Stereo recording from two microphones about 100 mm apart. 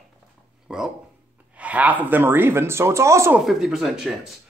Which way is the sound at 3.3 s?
5° right (ahead or behind).